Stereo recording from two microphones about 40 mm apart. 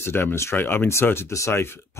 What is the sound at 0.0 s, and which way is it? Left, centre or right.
Speech, left.